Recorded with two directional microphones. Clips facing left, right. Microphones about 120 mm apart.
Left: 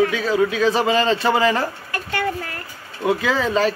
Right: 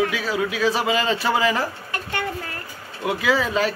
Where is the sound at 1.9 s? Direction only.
20° right (ahead or behind).